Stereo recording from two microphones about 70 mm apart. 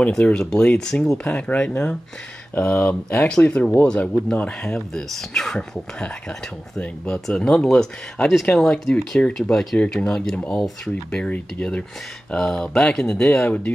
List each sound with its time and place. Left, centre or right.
0.2 s speech: centre